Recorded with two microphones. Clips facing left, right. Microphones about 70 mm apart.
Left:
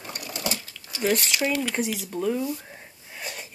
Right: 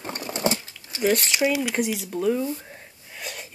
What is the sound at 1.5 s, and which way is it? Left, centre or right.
Speech, centre.